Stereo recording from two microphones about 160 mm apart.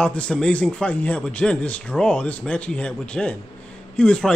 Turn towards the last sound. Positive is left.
turn(degrees=5)  # may be behind; listen again after turning